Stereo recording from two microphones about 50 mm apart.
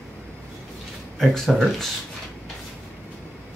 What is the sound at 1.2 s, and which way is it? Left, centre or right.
Speech, centre.